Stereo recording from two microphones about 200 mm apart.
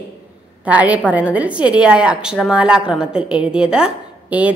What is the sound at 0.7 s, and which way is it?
A woman's voice, 5° right (ahead or behind).